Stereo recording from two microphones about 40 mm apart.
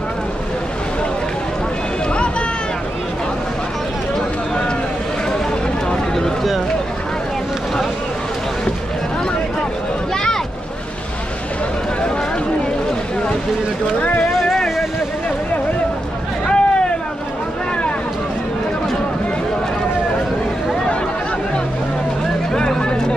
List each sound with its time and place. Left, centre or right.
14.0 s boat: left
16.4 s vehicle: left
22.8 s a sound: left